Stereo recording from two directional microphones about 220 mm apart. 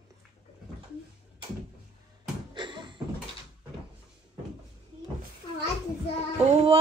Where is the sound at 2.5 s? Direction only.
20° right (ahead or behind).